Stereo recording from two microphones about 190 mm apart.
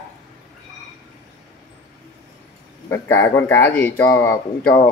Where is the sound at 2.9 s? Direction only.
15° left (ahead or behind).